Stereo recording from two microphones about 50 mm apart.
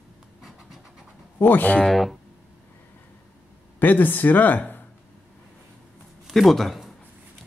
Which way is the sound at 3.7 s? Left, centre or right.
Left.